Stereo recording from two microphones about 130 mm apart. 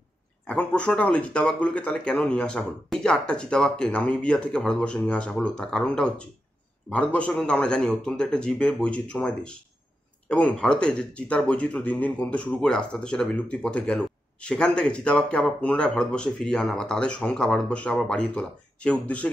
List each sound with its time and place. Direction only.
0.5 s speech: 10° left (ahead or behind)